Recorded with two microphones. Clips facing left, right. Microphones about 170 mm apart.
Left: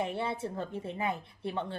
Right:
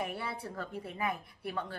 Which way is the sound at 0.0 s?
25° left (ahead or behind).